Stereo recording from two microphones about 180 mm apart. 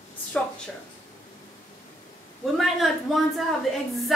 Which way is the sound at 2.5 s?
Centre (ahead or behind).